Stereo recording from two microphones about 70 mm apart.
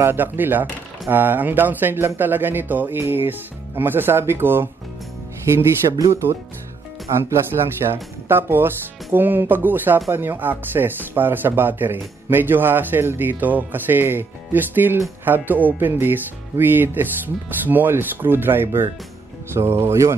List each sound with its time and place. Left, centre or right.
0.0 s speech: right
7.1 s speech: right